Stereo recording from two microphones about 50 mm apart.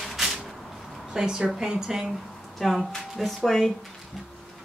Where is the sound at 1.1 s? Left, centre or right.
Centre.